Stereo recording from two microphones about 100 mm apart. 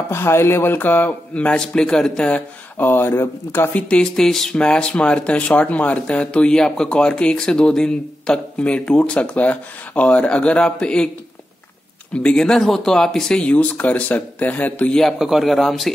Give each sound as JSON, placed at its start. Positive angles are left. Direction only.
{"t": 0.1, "sound": "speech", "side_deg": 25}
{"t": 2.8, "sound": "speech", "side_deg": 20}
{"t": 3.9, "sound": "speech", "side_deg": 5}
{"t": 12.1, "sound": "speech", "side_deg": 10}